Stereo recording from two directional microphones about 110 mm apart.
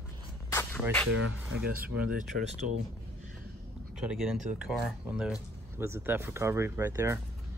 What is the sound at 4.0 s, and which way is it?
Speech, 5° right (ahead or behind).